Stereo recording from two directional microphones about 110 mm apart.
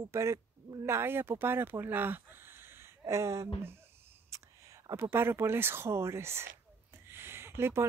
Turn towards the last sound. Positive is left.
turn(degrees=-25)  # may be behind; listen again after turning